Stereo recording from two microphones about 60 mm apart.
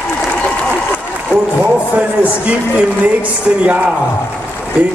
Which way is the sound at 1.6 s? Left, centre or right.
Right.